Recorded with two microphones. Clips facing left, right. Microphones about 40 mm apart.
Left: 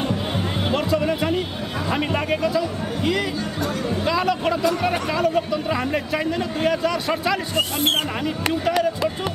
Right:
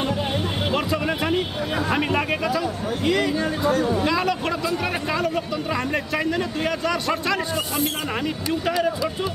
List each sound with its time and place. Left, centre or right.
0.7 s speech: centre
3.0 s speech: centre
7.5 s speech: left